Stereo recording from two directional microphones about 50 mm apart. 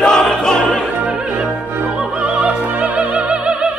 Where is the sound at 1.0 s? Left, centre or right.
Right.